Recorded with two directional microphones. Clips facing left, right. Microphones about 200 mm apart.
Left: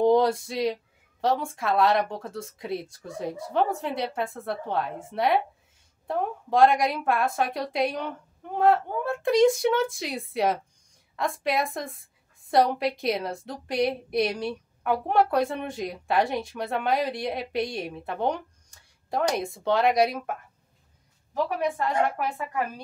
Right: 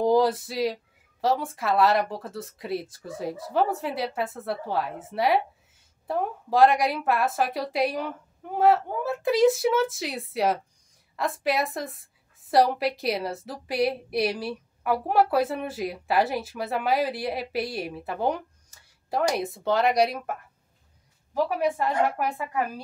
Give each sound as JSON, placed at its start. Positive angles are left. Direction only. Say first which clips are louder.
{"t": 0.0, "sound": "a woman's voice", "louder": "left 1 dB", "side_deg": 0}